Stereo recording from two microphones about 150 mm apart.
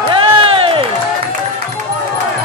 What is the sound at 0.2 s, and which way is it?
Music, 35° right (ahead or behind).